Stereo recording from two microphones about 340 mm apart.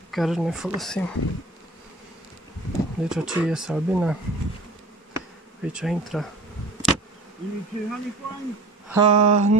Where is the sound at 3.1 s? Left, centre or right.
Centre.